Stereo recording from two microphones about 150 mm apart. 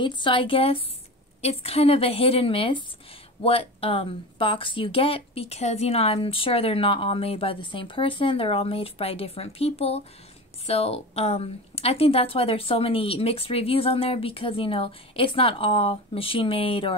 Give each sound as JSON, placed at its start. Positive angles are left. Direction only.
{"t": 0.0, "sound": "speech", "side_deg": 30}